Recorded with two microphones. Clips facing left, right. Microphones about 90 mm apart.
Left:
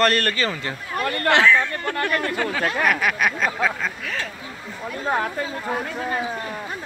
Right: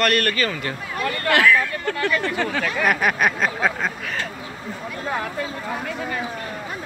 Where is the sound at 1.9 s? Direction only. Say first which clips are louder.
Right 2 dB; 50° left (ahead or behind).